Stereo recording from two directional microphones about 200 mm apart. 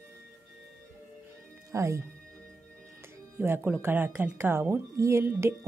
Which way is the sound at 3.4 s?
10° right (ahead or behind).